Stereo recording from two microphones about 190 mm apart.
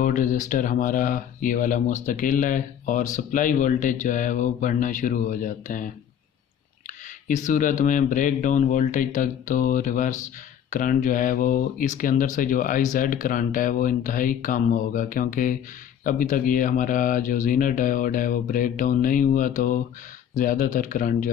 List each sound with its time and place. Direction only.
0.0 s speech: 45° left (ahead or behind)
7.2 s speech: 40° left (ahead or behind)